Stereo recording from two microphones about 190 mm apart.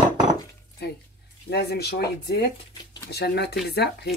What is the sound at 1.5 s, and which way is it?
Speech, 55° left (ahead or behind).